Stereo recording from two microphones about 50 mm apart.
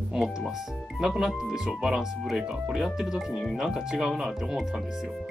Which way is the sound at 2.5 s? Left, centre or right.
Centre.